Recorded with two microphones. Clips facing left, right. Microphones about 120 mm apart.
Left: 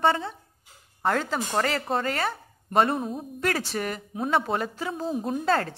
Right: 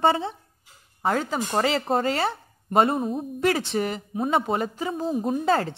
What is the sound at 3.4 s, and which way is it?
Speech, 20° right (ahead or behind).